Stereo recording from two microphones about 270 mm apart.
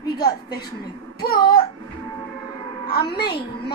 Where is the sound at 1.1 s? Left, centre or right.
Left.